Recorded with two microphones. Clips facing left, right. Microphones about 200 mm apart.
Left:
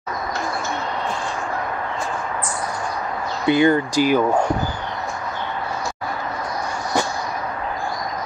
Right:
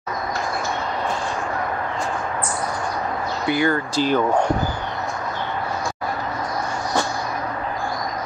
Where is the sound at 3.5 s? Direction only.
20° left (ahead or behind).